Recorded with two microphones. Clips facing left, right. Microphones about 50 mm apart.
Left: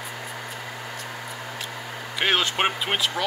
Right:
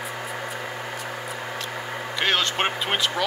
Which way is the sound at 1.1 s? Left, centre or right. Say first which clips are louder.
Right 3 dB; centre.